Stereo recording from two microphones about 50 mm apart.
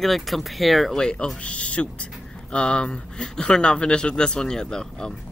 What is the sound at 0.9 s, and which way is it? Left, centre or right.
Speech, centre.